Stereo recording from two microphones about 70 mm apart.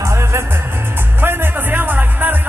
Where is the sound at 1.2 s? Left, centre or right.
Right.